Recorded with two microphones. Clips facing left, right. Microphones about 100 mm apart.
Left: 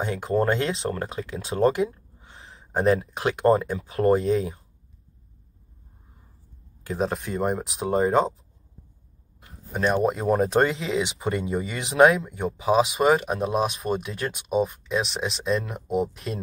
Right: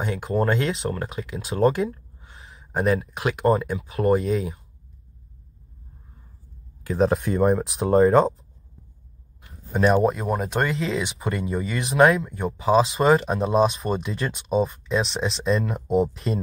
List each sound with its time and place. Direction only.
0.0 s speech: 30° left (ahead or behind)
7.0 s speech: centre (ahead or behind)
9.8 s speech: 5° right (ahead or behind)
10.3 s speech: 30° left (ahead or behind); by 12.8 s 15° left (ahead or behind)
12.9 s speech: 5° left (ahead or behind)